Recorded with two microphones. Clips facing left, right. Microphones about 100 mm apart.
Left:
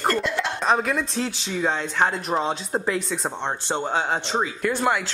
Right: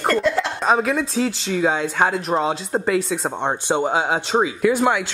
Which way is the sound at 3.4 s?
15° right (ahead or behind).